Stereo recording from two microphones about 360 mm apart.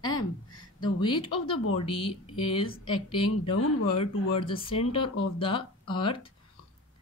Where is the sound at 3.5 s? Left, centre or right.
Left.